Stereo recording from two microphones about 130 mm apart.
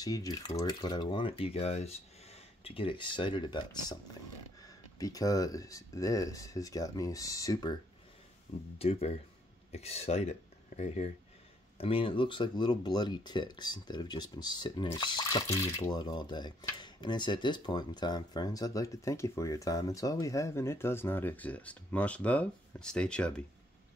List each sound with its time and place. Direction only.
0.0 s speech: 30° left (ahead or behind)
8.7 s speech: 50° left (ahead or behind)
11.8 s speech: 45° left (ahead or behind); by 23.4 s 5° left (ahead or behind)